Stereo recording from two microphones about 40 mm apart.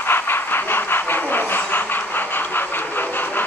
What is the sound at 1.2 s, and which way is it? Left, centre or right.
Vehicle, left.